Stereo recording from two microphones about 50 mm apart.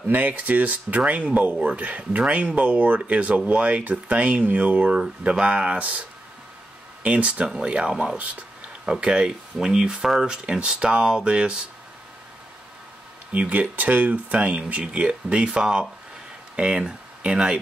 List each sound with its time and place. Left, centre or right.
0.1 s speech: right
13.3 s speech: right